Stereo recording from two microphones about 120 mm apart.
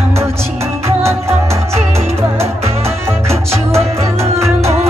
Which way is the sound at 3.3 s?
60° right (ahead or behind).